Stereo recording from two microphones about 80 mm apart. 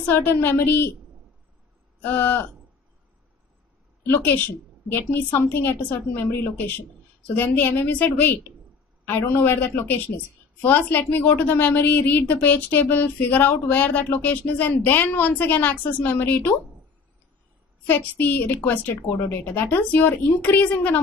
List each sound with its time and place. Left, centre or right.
0.0 s a woman's voice: left
2.0 s a woman's voice: left
4.0 s a woman's voice: left
17.8 s a woman's voice: left